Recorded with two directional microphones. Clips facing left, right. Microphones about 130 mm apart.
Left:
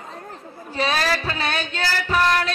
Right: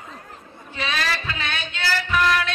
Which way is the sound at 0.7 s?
40° left (ahead or behind).